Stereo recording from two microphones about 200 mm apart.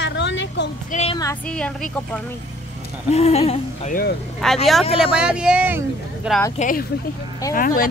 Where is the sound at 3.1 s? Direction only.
30° left (ahead or behind).